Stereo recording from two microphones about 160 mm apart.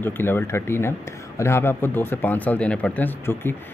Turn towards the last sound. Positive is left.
turn(degrees=15)  # may be behind; listen again after turning